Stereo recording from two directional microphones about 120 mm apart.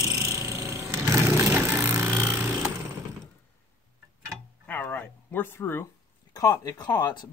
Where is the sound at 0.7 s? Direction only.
20° right (ahead or behind).